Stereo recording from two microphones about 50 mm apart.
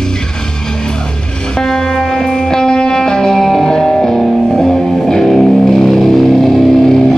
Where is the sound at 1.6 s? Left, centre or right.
Centre.